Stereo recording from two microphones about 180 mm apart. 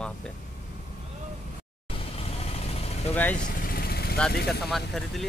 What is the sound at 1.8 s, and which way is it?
Vehicle, 30° left (ahead or behind).